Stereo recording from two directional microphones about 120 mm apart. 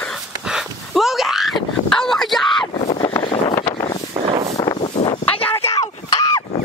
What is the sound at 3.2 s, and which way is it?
Vehicle, 50° left (ahead or behind).